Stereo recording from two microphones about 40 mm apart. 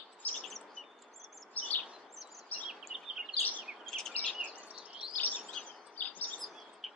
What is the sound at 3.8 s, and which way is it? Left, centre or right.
Chirp, centre.